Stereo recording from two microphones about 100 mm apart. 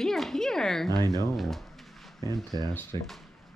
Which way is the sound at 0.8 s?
40° right (ahead or behind).